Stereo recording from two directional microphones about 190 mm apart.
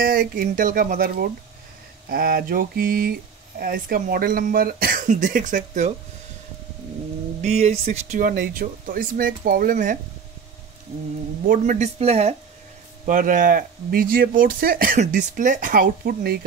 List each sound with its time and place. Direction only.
0.0 s speech: 50° right (ahead or behind)
7.4 s speech: 35° right (ahead or behind)
11.4 s speech: 45° right (ahead or behind)
13.0 s speech: 45° right (ahead or behind)